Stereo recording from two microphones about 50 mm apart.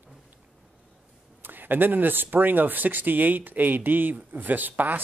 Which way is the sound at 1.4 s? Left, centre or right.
Right.